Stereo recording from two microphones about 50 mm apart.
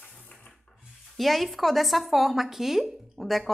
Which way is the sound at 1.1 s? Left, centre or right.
Centre.